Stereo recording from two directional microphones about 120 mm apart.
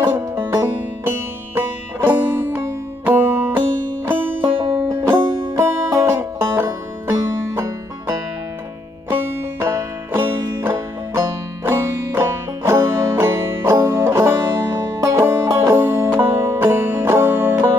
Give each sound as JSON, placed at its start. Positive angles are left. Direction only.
{"t": 0.0, "sound": "music", "side_deg": -20}
{"t": 4.6, "sound": "music", "side_deg": -35}
{"t": 5.6, "sound": "music", "side_deg": -20}
{"t": 9.2, "sound": "music", "side_deg": -20}